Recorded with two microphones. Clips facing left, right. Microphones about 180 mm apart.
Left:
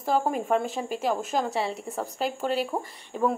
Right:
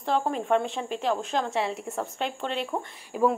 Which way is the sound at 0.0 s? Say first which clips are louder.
Left 1 dB; 5° left (ahead or behind).